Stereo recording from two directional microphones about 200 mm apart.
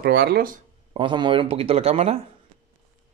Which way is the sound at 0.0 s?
55° right (ahead or behind).